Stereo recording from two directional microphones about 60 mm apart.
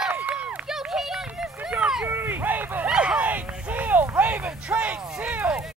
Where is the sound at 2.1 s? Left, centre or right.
Right.